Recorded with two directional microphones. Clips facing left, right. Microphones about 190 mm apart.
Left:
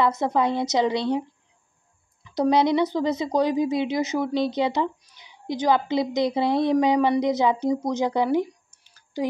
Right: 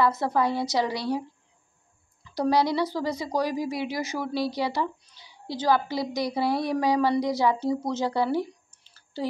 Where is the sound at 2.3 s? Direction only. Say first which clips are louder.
Left 4 dB; 20° left (ahead or behind).